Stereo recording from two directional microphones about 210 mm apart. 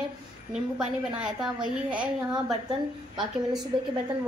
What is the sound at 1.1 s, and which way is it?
Speech, 5° right (ahead or behind).